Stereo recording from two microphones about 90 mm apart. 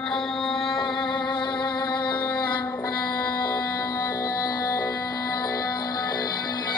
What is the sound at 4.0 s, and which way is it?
Music, 40° left (ahead or behind).